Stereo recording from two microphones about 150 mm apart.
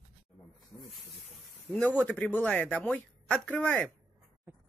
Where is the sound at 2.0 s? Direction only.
10° left (ahead or behind).